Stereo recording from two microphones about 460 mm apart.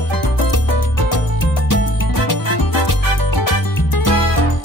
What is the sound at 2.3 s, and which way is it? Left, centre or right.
Music, left.